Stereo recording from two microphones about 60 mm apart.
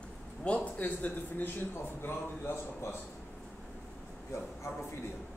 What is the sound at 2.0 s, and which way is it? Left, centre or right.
Speech, left.